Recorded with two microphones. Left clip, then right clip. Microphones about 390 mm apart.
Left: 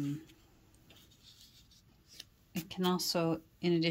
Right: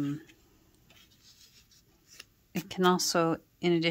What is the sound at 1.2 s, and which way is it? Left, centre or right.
Speech, centre.